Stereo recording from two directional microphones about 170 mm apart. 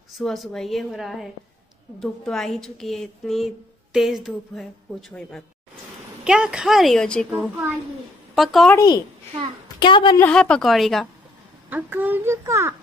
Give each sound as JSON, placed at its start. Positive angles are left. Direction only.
{"t": 0.2, "sound": "a woman's voice", "side_deg": 0}
{"t": 6.2, "sound": "a woman's voice", "side_deg": -5}
{"t": 8.4, "sound": "a woman's voice", "side_deg": 0}
{"t": 8.7, "sound": "a woman's voice", "side_deg": 25}
{"t": 10.1, "sound": "a woman's voice", "side_deg": 10}
{"t": 11.7, "sound": "a child's voice", "side_deg": -10}